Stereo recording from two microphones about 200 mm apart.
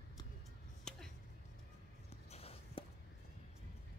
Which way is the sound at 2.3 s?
30° left (ahead or behind).